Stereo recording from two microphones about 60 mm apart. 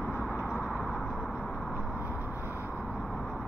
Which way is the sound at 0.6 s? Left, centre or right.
Centre.